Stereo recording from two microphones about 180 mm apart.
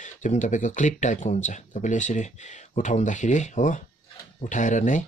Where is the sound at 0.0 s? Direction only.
45° left (ahead or behind).